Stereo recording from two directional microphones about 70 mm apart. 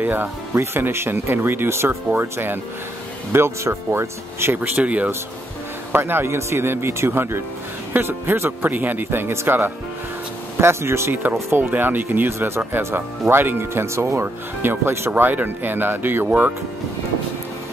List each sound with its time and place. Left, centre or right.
0.0 s speech: right
4.6 s speech: centre
5.9 s speech: right
11.5 s speech: right